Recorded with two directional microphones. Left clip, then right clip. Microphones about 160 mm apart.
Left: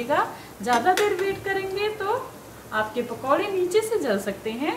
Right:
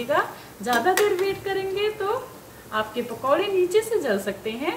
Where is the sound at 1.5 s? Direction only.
10° right (ahead or behind).